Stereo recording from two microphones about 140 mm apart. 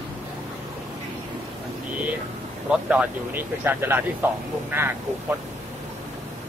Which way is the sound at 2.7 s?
10° right (ahead or behind).